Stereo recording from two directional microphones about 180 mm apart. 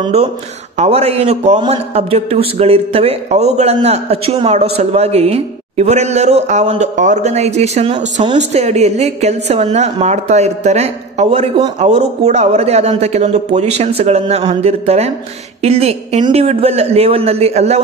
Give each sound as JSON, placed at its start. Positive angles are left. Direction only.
{"t": 0.0, "sound": "a man's voice", "side_deg": -35}